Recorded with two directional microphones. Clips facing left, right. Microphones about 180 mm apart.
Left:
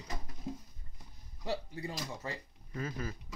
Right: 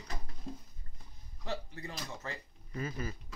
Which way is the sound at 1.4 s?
10° left (ahead or behind).